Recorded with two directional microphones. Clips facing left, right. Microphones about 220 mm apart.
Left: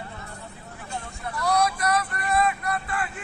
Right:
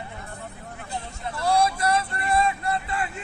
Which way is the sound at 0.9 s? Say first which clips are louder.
Even; 25° right (ahead or behind).